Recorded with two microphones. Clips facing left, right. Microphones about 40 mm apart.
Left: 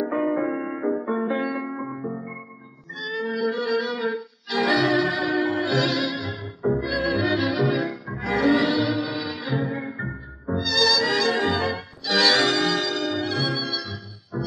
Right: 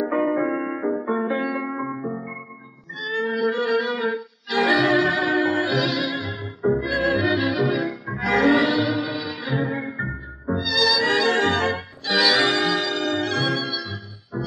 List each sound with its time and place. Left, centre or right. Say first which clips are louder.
0.0 s music: right 2 dB; centre
0.8 s music: even; centre
3.3 s music: right 2 dB; right
5.7 s music: even; centre
6.8 s music: right 2 dB; right; by 8.2 s centre
8.4 s music: right 2 dB; right
8.6 s music: right 1 dB; centre
9.5 s music: right 3 dB; right
9.8 s music: right 3 dB; centre
11.0 s music: right 2 dB; right
11.3 s music: right 3 dB; right
12.1 s music: right 1 dB; centre